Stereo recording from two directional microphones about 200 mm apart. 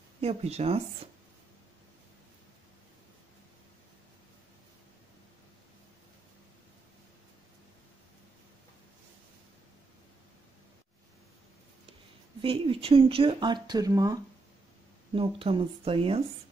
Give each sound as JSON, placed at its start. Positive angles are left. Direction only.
{"t": 0.2, "sound": "speech", "side_deg": -30}
{"t": 12.4, "sound": "speech", "side_deg": -25}